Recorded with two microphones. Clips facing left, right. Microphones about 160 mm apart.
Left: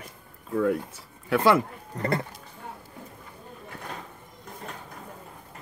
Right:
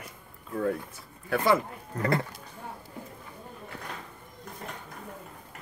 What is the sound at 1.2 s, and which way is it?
Speech, 70° left (ahead or behind).